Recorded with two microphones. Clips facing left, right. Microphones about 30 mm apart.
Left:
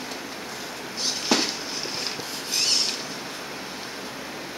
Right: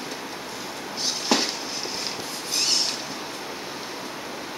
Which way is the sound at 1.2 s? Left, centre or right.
Centre.